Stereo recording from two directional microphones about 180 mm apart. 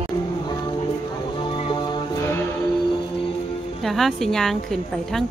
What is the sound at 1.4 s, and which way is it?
Music, 25° left (ahead or behind).